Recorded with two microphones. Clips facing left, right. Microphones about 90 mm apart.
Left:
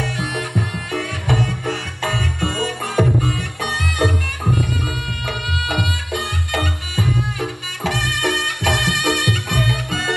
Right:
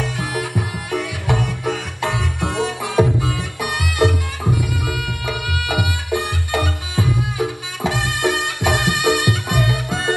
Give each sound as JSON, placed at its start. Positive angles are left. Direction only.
{"t": 0.3, "sound": "music", "side_deg": -10}